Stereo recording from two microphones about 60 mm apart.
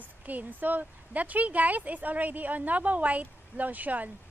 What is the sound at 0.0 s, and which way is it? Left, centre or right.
Speech, right.